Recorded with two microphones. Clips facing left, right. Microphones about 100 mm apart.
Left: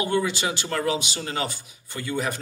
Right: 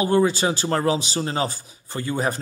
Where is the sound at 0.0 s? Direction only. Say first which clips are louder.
Right 5 dB; 35° right (ahead or behind).